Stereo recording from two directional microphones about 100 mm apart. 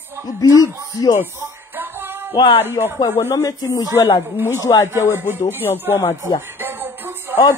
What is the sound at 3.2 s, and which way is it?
Speech, 30° left (ahead or behind).